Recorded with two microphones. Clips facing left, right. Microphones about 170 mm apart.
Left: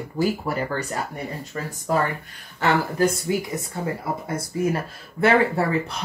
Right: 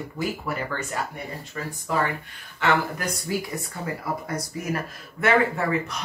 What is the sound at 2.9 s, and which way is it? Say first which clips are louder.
Speech: left 7 dB; 20° left (ahead or behind).